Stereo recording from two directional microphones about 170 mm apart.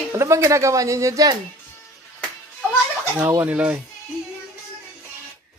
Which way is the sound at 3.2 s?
10° right (ahead or behind).